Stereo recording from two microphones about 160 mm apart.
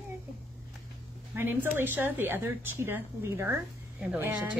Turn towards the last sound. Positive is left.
turn(degrees=-10)  # may be behind; listen again after turning